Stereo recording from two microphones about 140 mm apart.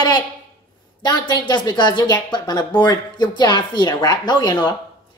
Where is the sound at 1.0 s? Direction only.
30° left (ahead or behind).